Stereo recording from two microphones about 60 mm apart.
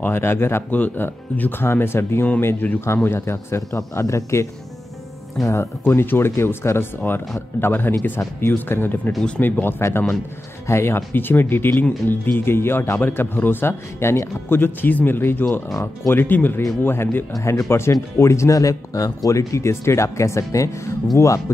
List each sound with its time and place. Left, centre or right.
0.0 s speech: left
2.6 s speech: left
3.1 s speech: left
5.9 s speech: left
10.7 s speech: left
17.4 s speech: left